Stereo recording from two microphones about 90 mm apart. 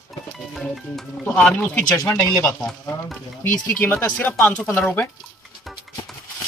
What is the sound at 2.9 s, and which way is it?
Speech, 50° left (ahead or behind).